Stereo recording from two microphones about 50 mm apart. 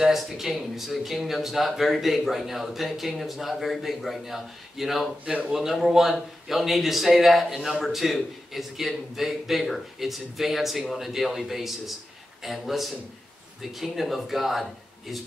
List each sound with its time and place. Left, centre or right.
0.0 s speech: centre
5.2 s speech: right
5.5 s speech: centre